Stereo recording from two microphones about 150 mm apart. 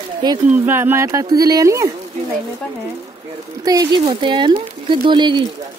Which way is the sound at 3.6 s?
25° right (ahead or behind).